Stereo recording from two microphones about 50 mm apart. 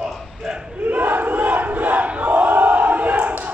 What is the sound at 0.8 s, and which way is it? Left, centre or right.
Crowd, right.